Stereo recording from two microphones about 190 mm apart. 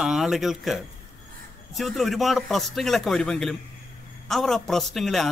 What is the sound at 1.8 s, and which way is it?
A man's voice, centre (ahead or behind).